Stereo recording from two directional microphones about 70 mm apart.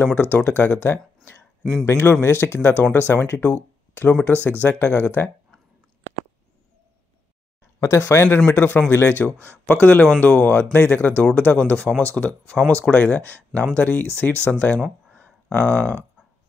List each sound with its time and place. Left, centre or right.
0.0 s speech: left
1.6 s speech: centre
1.9 s speech: left
7.8 s speech: left
15.1 s a sound: left